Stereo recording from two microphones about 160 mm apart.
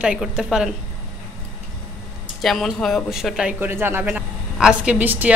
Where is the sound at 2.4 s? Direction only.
Centre (ahead or behind).